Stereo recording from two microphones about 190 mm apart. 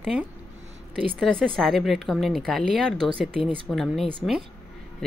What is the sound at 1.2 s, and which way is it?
Speech, 5° left (ahead or behind).